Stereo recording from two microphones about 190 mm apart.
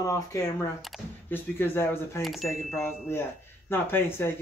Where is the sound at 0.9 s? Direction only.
5° right (ahead or behind).